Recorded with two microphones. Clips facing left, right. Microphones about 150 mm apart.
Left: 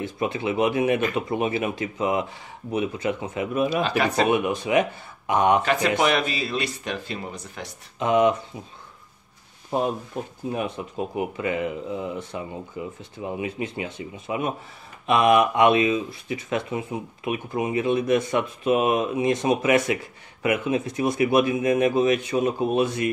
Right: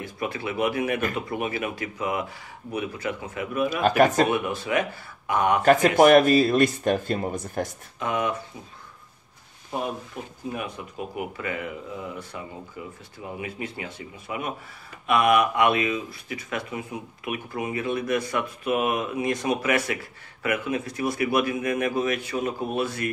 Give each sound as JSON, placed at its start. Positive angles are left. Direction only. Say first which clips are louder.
{"t": 0.0, "sound": "speech", "louder": "left 4 dB", "side_deg": 25}
{"t": 3.8, "sound": "speech", "louder": "right 3 dB", "side_deg": -45}
{"t": 4.3, "sound": "speech", "louder": "left 3 dB", "side_deg": 20}
{"t": 5.6, "sound": "speech", "louder": "right 5 dB", "side_deg": -45}
{"t": 8.0, "sound": "speech", "louder": "left 7 dB", "side_deg": 20}
{"t": 10.5, "sound": "speech", "louder": "left 6 dB", "side_deg": 25}